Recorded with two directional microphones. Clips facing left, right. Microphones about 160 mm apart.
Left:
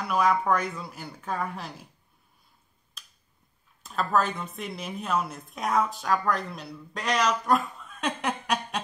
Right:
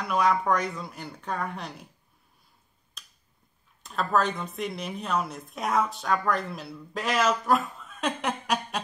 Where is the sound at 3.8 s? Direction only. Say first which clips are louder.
Even; centre (ahead or behind).